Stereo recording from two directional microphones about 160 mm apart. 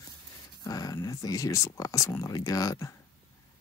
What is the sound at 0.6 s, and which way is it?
Speech, 20° left (ahead or behind).